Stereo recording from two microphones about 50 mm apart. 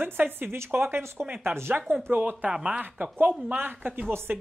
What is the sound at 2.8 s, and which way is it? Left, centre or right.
Speech, right.